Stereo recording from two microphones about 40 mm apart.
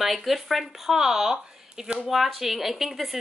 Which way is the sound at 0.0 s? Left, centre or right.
Centre.